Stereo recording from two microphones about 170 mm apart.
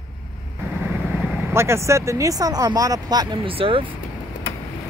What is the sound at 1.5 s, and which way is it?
Speech, 15° right (ahead or behind).